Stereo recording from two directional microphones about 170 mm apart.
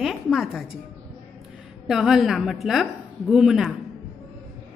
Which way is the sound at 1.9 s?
Centre (ahead or behind).